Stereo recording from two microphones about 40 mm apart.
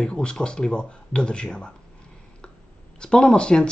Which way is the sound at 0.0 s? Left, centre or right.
Left.